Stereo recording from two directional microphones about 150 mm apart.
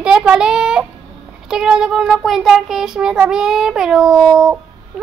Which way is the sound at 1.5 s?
5° right (ahead or behind).